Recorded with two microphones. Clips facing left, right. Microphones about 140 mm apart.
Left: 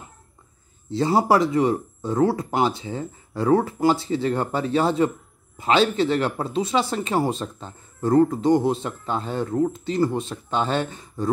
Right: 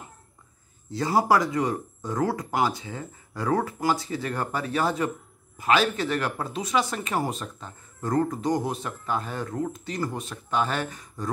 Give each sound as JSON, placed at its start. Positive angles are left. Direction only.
{"t": 0.8, "sound": "speech", "side_deg": 25}